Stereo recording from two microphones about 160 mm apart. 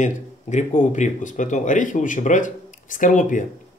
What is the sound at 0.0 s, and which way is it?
Speech, 50° left (ahead or behind).